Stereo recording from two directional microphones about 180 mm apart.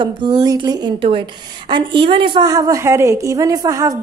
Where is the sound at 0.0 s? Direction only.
25° right (ahead or behind).